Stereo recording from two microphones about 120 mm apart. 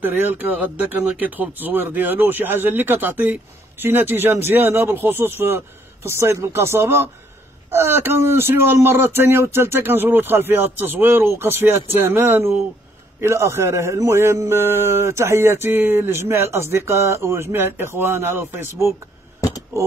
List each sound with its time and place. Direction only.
0.0 s speech: 15° right (ahead or behind)